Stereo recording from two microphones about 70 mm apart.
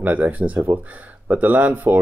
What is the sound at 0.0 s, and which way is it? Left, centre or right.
Speech, right.